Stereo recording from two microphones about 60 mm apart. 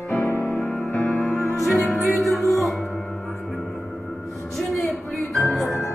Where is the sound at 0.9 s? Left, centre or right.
Left.